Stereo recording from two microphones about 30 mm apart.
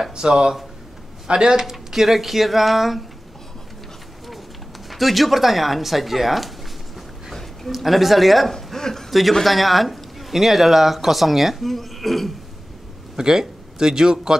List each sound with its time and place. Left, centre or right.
0.1 s speech: right
1.7 s speech: centre
4.8 s speech: centre
7.7 s speech: centre
8.7 s a man's voice: centre
9.4 s speech: centre
13.2 s speech: right